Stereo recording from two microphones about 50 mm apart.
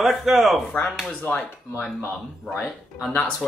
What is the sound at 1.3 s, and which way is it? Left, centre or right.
Speech, left.